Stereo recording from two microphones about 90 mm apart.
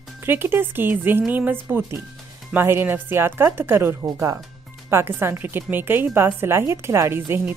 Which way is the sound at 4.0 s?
40° right (ahead or behind).